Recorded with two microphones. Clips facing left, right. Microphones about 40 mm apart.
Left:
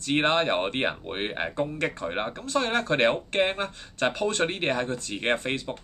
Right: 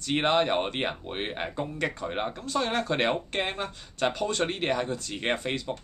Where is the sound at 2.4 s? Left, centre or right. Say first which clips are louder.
Left 3 dB; centre.